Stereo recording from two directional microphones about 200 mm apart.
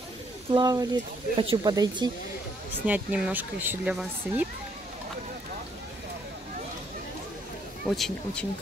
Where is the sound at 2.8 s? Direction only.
5° right (ahead or behind).